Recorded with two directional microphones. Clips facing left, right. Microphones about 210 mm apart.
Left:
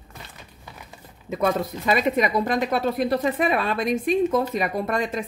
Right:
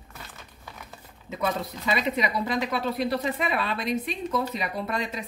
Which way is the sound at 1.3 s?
50° left (ahead or behind).